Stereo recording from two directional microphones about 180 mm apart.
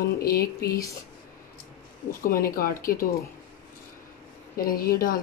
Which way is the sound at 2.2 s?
55° left (ahead or behind).